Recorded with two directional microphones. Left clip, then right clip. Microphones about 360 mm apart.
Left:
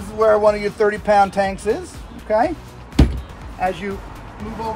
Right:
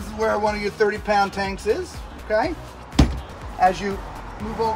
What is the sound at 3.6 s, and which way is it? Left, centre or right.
Speech, centre.